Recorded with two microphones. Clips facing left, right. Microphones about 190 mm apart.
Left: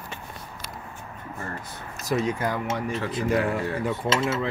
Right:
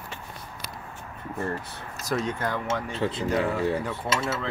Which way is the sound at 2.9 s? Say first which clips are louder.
Left 2 dB; 25° right (ahead or behind).